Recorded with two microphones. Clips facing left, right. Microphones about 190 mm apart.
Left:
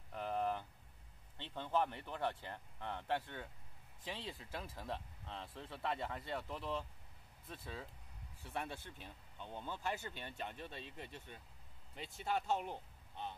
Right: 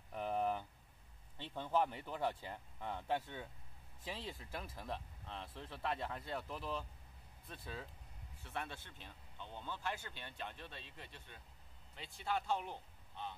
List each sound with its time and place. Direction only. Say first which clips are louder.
0.1 s a sound: right 1 dB; 10° right (ahead or behind)
1.4 s speech: right 1 dB; 10° right (ahead or behind)
8.5 s speech: left 2 dB; 10° left (ahead or behind)
10.8 s speech: left 5 dB; 50° left (ahead or behind)